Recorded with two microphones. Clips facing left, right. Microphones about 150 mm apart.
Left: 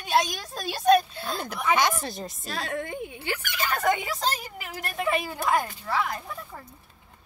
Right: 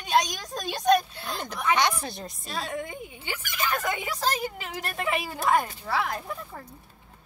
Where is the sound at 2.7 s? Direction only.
60° left (ahead or behind).